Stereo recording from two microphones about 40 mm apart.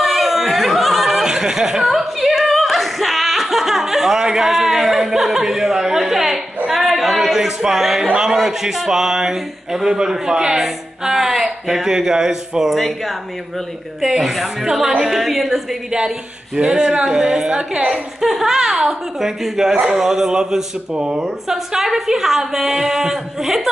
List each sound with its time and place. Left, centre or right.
0.0 s a sound: centre
1.2 s a sound: centre
8.2 s a woman's voice: centre
12.7 s a woman's voice: centre
16.5 s a woman's voice: centre
18.2 s a woman's voice: centre; by 21.2 s right
21.2 s a woman's voice: centre